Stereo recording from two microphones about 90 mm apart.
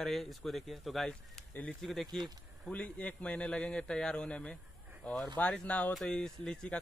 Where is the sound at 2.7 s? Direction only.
15° left (ahead or behind).